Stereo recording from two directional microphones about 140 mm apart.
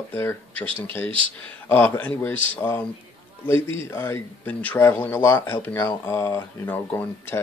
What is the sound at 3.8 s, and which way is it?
Speech, 20° left (ahead or behind).